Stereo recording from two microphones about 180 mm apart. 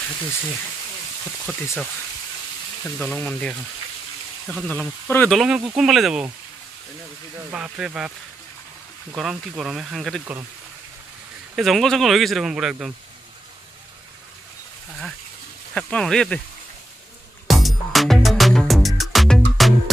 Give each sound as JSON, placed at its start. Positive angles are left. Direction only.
{"t": 1.4, "sound": "speech", "side_deg": -5}
{"t": 5.4, "sound": "speech", "side_deg": -5}
{"t": 7.3, "sound": "speech", "side_deg": -5}
{"t": 9.1, "sound": "speech", "side_deg": -5}
{"t": 11.5, "sound": "speech", "side_deg": 0}
{"t": 15.7, "sound": "speech", "side_deg": 5}
{"t": 17.5, "sound": "music", "side_deg": 0}